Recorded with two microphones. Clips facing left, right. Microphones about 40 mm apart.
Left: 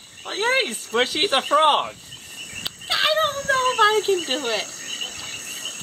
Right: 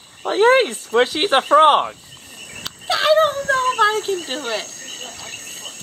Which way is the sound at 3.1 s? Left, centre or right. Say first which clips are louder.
Right 6 dB; centre.